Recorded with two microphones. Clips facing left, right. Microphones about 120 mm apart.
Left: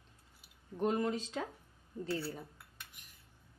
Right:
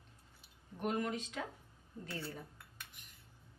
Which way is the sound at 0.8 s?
30° left (ahead or behind).